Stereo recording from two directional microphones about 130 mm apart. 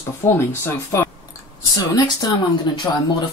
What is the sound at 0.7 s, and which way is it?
Speech, 20° left (ahead or behind).